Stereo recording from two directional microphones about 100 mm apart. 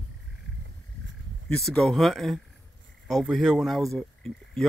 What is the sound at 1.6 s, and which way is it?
Speech, 5° left (ahead or behind).